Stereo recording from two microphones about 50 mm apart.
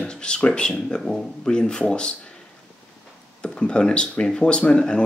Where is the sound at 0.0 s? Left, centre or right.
Centre.